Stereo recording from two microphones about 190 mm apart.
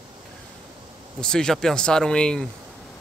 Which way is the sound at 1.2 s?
5° left (ahead or behind).